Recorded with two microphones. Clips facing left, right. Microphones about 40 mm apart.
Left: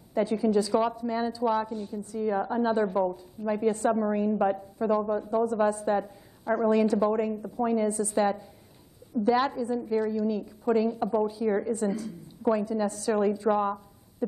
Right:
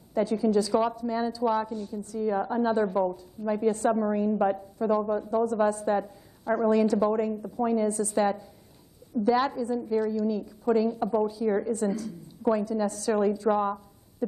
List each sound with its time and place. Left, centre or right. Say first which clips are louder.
0.1 s a woman's voice: even; left
4.4 s a woman's voice: even; centre
4.7 s speech: even; centre
5.0 s a woman's voice: even; centre
5.3 s a woman's voice: even; left
5.9 s a woman's voice: even; centre
6.7 s a woman's voice: even; left